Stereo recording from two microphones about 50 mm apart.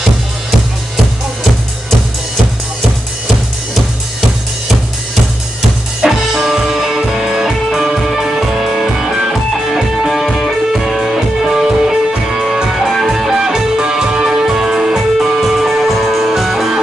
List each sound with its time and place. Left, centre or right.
5.6 s music: centre
9.1 s music: centre
9.8 s music: centre